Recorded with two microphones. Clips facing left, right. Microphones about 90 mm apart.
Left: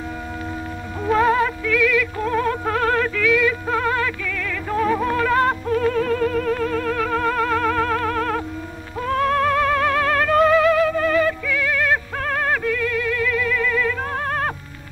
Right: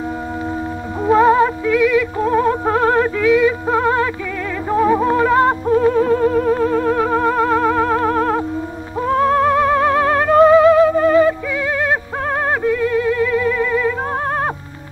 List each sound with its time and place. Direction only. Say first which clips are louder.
1.0 s music: right 6 dB; 20° right (ahead or behind)
12.4 s theremin: right 6 dB; 25° right (ahead or behind)